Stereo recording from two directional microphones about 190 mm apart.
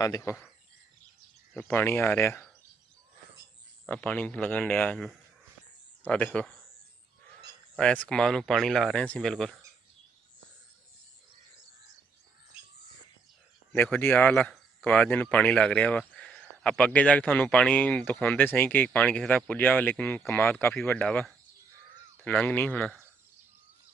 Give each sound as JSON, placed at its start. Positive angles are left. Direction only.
{"t": 0.0, "sound": "speech", "side_deg": 15}
{"t": 1.5, "sound": "speech", "side_deg": 10}
{"t": 3.8, "sound": "speech", "side_deg": 5}
{"t": 7.7, "sound": "speech", "side_deg": 5}
{"t": 13.7, "sound": "speech", "side_deg": 10}